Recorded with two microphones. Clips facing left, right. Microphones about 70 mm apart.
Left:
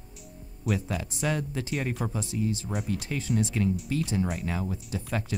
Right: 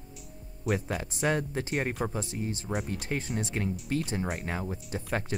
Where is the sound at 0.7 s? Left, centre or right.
Right.